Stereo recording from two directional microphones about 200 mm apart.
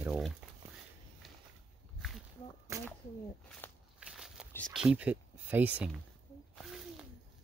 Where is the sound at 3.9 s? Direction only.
5° right (ahead or behind).